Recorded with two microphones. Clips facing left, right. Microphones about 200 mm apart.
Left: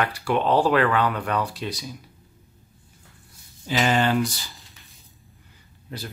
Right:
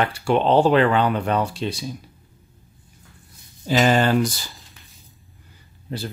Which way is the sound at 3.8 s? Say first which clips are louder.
Right 2 dB; 40° right (ahead or behind).